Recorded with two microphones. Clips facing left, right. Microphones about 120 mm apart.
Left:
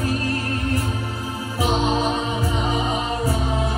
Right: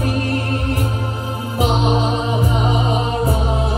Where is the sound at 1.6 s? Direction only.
25° right (ahead or behind).